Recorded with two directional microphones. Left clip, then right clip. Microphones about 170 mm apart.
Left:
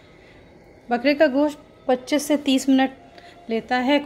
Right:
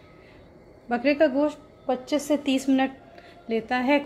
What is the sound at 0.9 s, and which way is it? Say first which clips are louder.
A woman's voice: left 3 dB; 15° left (ahead or behind).